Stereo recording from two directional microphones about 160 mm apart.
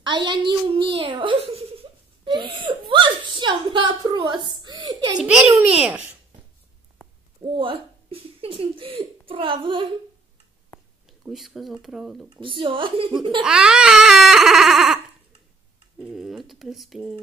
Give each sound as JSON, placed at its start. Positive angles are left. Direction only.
{"t": 0.0, "sound": "giggle", "side_deg": -30}
{"t": 5.2, "sound": "speech", "side_deg": -5}
{"t": 7.4, "sound": "speech", "side_deg": -30}
{"t": 11.1, "sound": "speech", "side_deg": 0}
{"t": 12.4, "sound": "speech", "side_deg": -35}
{"t": 13.4, "sound": "speech", "side_deg": -5}
{"t": 16.0, "sound": "speech", "side_deg": 0}